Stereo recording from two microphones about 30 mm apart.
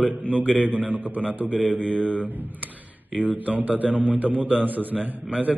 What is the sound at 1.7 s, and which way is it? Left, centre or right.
Mantra, left.